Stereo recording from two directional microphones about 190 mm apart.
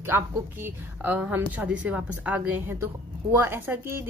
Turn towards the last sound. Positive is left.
turn(degrees=-10)  # may be behind; listen again after turning